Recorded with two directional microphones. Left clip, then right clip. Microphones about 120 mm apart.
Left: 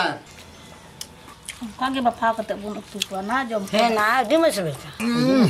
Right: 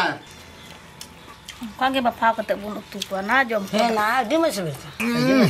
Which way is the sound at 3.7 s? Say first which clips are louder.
Left 1 dB; 20° left (ahead or behind).